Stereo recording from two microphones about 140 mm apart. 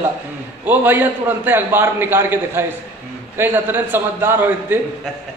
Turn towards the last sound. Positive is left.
turn(degrees=-15)  # may be behind; listen again after turning